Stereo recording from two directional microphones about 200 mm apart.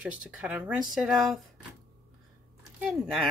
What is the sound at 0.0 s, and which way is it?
A woman's voice, 5° right (ahead or behind).